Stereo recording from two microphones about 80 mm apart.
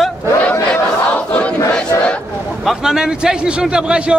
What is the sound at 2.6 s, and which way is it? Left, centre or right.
A man's voice, centre.